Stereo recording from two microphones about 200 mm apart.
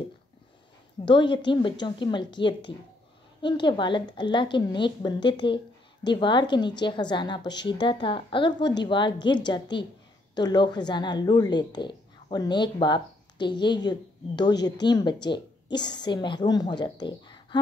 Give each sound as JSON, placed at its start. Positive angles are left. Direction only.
{"t": 1.0, "sound": "a woman's voice", "side_deg": 25}